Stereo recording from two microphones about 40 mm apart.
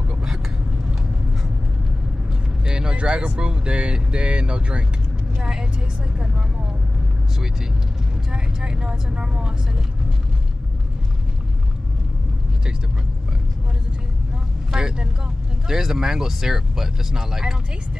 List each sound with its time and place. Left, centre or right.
2.6 s speech: right
5.4 s speech: centre
8.3 s speech: centre
14.7 s speech: centre